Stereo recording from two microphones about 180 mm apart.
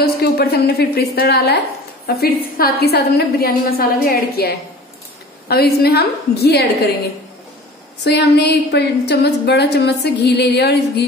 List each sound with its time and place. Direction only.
0.0 s a woman's voice: 60° left (ahead or behind)
8.0 s a woman's voice: 65° left (ahead or behind)